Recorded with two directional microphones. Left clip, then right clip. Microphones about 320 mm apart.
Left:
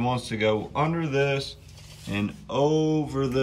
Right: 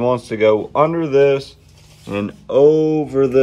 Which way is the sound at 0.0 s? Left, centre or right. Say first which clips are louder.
Right 10 dB; centre.